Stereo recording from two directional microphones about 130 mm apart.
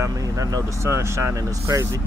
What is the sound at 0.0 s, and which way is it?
Speech, 25° right (ahead or behind).